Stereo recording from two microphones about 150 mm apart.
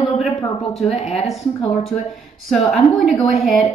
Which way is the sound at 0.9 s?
45° left (ahead or behind).